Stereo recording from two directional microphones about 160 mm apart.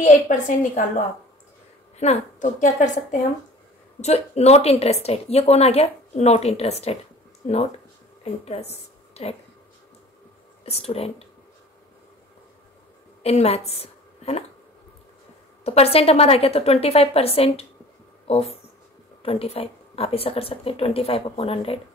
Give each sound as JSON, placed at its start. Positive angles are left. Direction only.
{"t": 0.0, "sound": "a woman's voice", "side_deg": 50}
{"t": 8.2, "sound": "a woman's voice", "side_deg": 40}
{"t": 10.6, "sound": "a woman's voice", "side_deg": 40}
{"t": 13.2, "sound": "a woman's voice", "side_deg": 40}
{"t": 15.6, "sound": "a woman's voice", "side_deg": 40}
{"t": 18.2, "sound": "a sound", "side_deg": 40}
{"t": 19.2, "sound": "a woman's voice", "side_deg": 40}